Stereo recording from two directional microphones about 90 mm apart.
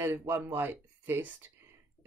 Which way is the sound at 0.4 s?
20° right (ahead or behind).